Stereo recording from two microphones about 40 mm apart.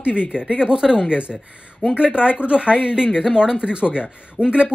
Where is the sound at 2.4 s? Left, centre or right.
Right.